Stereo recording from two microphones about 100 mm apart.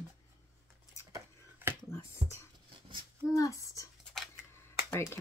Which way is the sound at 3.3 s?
35° left (ahead or behind).